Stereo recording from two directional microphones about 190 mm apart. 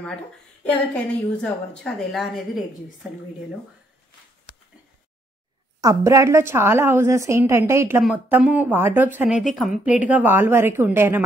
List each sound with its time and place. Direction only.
0.7 s a woman's voice: 5° left (ahead or behind)
5.8 s a woman's voice: 20° right (ahead or behind)